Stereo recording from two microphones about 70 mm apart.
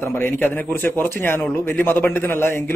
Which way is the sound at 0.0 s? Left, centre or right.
Left.